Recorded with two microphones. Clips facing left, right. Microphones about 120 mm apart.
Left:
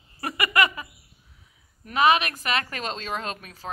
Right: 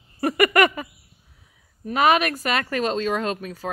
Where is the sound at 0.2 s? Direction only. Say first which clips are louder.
Right 6 dB; 45° right (ahead or behind).